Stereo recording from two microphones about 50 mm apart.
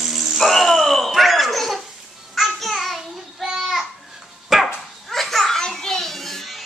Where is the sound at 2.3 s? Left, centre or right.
Centre.